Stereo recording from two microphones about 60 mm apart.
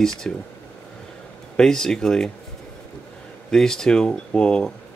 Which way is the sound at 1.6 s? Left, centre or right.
Centre.